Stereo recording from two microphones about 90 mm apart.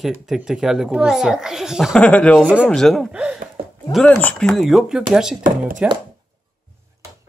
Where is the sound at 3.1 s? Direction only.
10° right (ahead or behind).